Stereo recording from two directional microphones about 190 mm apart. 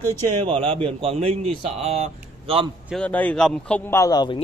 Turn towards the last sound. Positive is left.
turn(degrees=20)  # may be behind; listen again after turning